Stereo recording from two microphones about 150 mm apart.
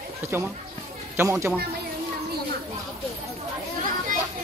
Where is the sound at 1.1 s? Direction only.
15° right (ahead or behind).